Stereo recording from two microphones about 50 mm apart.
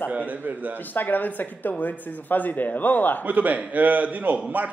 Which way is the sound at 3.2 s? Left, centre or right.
Right.